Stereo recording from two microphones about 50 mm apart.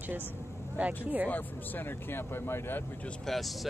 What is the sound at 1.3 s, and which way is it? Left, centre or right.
Speech, left.